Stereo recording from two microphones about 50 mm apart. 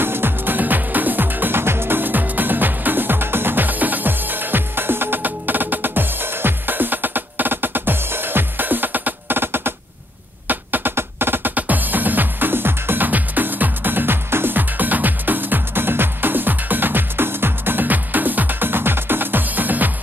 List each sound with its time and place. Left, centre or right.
0.0 s music: right
10.5 s a sound: right
11.0 s music: right
11.5 s music: right